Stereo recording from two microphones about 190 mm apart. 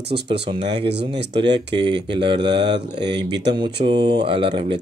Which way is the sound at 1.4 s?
25° right (ahead or behind).